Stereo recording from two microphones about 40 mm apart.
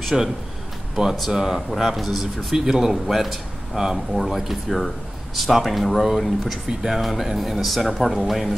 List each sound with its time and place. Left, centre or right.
0.1 s speech: centre
1.3 s speech: centre
2.5 s speech: centre
6.7 s speech: centre
7.0 s speech: centre